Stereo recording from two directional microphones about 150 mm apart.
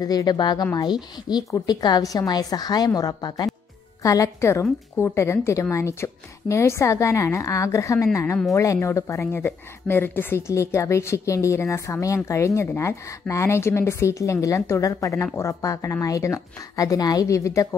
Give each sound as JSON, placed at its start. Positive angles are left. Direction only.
{"t": 0.0, "sound": "speech", "side_deg": 25}